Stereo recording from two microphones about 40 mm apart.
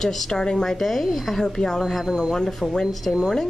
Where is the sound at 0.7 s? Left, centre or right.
Centre.